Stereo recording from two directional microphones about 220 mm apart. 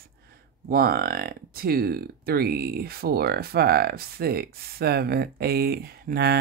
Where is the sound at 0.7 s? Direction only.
40° right (ahead or behind).